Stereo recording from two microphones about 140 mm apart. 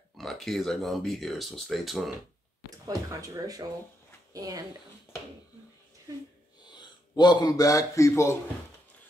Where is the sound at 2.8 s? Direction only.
25° right (ahead or behind).